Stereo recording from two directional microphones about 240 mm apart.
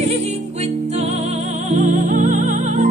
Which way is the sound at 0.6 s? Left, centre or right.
Right.